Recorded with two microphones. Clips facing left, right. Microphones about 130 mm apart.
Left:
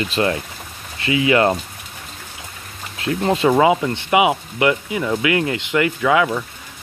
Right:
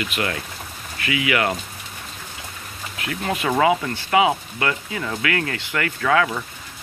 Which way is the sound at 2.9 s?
30° left (ahead or behind).